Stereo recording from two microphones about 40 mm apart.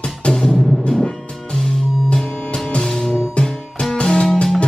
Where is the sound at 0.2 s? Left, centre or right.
Centre.